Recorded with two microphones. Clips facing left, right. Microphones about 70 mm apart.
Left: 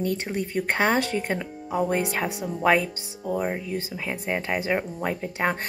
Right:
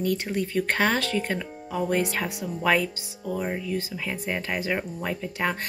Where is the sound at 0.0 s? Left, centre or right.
Left.